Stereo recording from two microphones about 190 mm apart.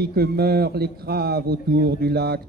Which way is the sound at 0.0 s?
55° right (ahead or behind).